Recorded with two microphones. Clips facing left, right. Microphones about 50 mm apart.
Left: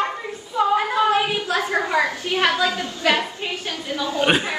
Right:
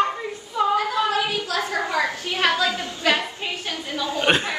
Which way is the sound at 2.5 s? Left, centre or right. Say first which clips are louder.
Right 2 dB; left.